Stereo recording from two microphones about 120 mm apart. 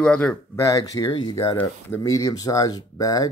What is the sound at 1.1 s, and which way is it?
Speech, 40° left (ahead or behind).